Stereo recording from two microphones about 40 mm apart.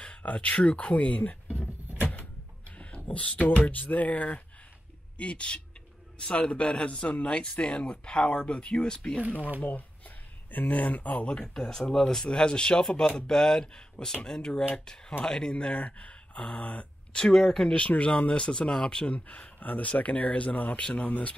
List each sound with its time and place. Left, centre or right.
0.0 s speech: left
2.7 s a sound: left
3.1 s a man's voice: left
9.6 s speech: left
11.2 s a man's voice: left
15.5 s speech: left
17.2 s speech: centre
17.7 s a man's voice: left
19.1 s speech: left
20.8 s a man's voice: left